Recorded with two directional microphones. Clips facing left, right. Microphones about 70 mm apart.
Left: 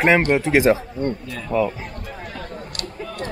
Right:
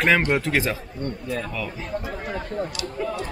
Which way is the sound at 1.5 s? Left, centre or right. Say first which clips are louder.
Left 11 dB; left.